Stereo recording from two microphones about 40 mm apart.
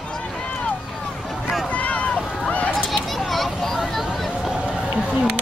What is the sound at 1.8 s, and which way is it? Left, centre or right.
Run, left.